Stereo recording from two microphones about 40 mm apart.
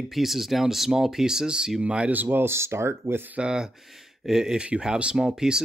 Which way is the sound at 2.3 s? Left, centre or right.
Right.